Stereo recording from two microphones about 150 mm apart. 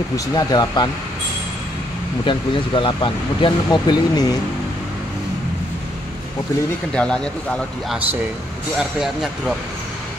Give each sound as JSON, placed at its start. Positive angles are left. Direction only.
{"t": 0.1, "sound": "speech", "side_deg": 25}
{"t": 2.2, "sound": "speech", "side_deg": 35}
{"t": 6.9, "sound": "speech", "side_deg": 5}